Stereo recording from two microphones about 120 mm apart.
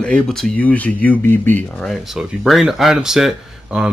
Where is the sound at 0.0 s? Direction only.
5° left (ahead or behind).